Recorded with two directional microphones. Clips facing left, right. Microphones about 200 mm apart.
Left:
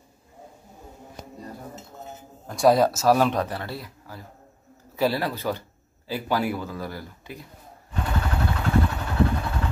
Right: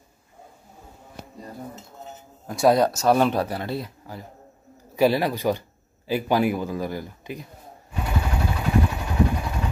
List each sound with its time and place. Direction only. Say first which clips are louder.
2.4 s a man's voice: even; 5° right (ahead or behind)
7.9 s vehicle: even; 10° right (ahead or behind)